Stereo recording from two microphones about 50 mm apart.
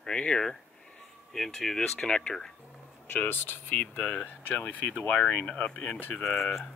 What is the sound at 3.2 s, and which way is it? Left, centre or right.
Speech, left.